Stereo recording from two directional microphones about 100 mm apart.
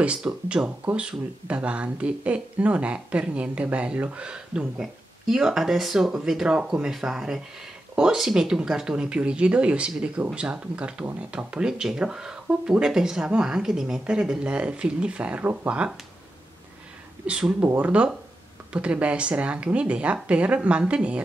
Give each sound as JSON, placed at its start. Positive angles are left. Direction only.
{"t": 0.0, "sound": "speech", "side_deg": -10}
{"t": 17.3, "sound": "speech", "side_deg": -10}